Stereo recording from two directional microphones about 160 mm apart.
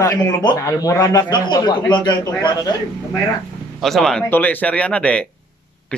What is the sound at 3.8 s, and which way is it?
Speech, centre (ahead or behind).